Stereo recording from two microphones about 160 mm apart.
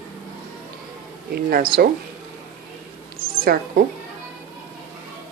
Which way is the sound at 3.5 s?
70° right (ahead or behind).